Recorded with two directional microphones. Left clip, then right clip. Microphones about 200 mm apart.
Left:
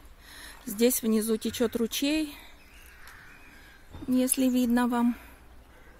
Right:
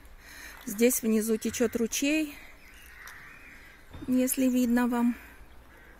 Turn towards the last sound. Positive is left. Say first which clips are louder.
# left 1 dB
turn(degrees=0)  # may be behind; listen again after turning